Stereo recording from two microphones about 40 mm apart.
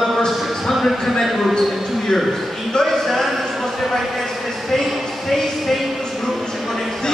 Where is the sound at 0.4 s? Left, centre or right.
Centre.